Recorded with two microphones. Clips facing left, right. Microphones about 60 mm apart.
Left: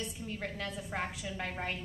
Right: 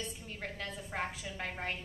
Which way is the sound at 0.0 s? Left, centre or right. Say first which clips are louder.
Left 3 dB; centre.